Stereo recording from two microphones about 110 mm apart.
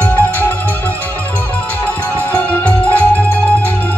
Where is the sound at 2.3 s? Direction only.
15° left (ahead or behind).